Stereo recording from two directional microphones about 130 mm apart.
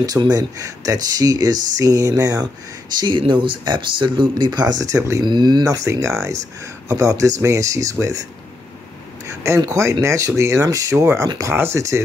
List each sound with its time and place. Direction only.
0.0 s speech: 30° right (ahead or behind)
5.2 s speech: 35° right (ahead or behind)
9.6 s speech: 20° right (ahead or behind)